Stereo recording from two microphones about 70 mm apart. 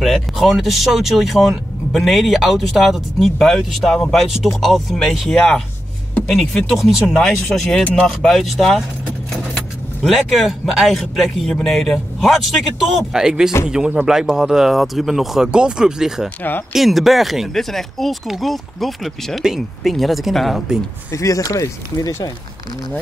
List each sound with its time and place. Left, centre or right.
0.0 s speech: centre
7.2 s speech: centre
10.0 s speech: centre
21.1 s speech: left